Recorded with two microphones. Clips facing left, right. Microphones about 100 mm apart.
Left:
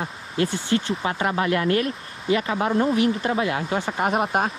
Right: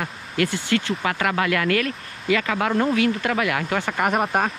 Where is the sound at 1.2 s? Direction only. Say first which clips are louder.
Even; 90° right.